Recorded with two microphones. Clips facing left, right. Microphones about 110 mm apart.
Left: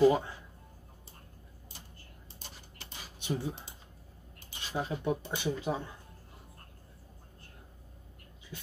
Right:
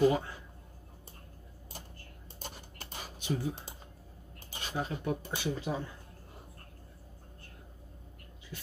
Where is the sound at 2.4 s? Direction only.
50° right (ahead or behind).